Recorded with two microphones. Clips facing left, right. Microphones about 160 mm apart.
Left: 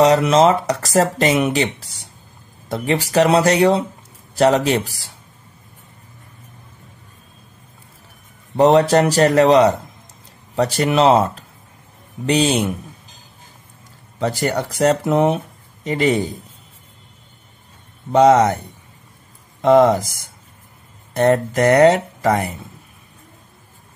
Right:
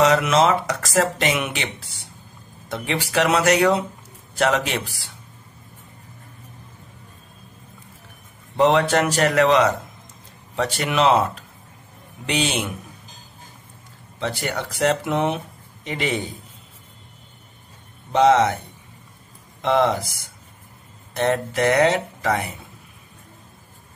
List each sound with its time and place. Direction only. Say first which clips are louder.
0.0 s speech: left 4 dB; 35° left (ahead or behind)
8.5 s speech: left 5 dB; 40° left (ahead or behind)
14.2 s speech: left 6 dB; 40° left (ahead or behind)
18.1 s speech: left 4 dB; 40° left (ahead or behind)
19.6 s speech: left 7 dB; 45° left (ahead or behind)
21.2 s speech: left 5 dB; 40° left (ahead or behind)